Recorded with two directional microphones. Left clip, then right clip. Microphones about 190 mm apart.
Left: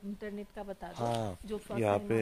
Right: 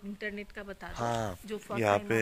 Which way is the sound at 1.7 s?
Centre (ahead or behind).